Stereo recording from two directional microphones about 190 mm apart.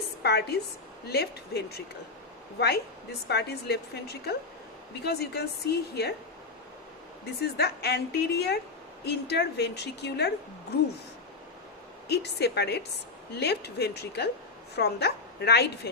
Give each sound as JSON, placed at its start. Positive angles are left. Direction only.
{"t": 0.2, "sound": "a woman's voice", "side_deg": 60}
{"t": 7.5, "sound": "a woman's voice", "side_deg": 60}
{"t": 12.1, "sound": "a woman's voice", "side_deg": 60}